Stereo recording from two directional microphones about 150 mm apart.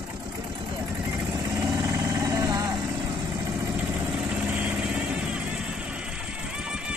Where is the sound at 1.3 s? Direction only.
25° right (ahead or behind).